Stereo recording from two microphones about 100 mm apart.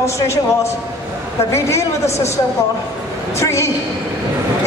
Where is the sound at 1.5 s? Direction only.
30° left (ahead or behind).